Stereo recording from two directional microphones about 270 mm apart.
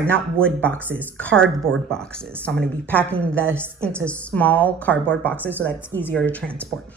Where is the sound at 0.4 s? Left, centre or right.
Centre.